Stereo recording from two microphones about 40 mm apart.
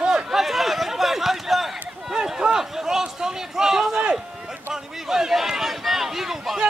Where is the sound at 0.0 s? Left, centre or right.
Centre.